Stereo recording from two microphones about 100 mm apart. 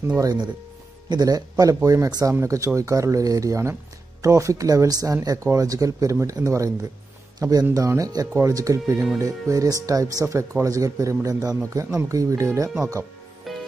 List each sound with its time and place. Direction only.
0.2 s speech: 40° right (ahead or behind)
13.5 s music: centre (ahead or behind)